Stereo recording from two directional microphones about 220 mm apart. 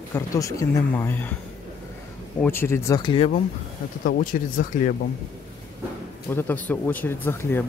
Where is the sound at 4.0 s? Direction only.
40° left (ahead or behind).